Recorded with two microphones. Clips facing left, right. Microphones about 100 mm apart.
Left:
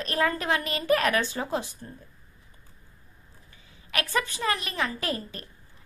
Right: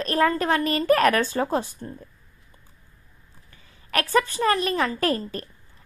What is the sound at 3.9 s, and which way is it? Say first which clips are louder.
A woman's voice: right 6 dB; 40° right (ahead or behind).